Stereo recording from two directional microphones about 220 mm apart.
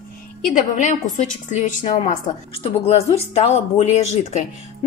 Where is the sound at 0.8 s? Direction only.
35° left (ahead or behind).